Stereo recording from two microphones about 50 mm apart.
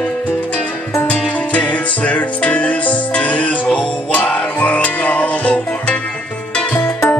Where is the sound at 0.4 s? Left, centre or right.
Left.